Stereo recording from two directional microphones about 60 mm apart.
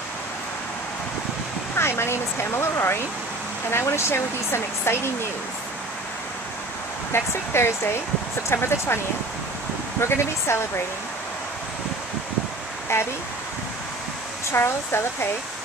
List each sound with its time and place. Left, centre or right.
1.8 s speech: left
7.1 s speech: left
12.9 s speech: left
14.5 s speech: left